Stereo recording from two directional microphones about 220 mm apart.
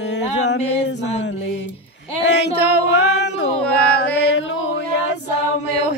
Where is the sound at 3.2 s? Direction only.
55° left (ahead or behind).